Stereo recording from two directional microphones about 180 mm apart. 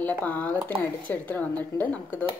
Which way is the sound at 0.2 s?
10° left (ahead or behind).